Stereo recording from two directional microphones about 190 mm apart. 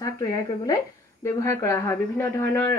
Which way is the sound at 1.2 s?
15° left (ahead or behind).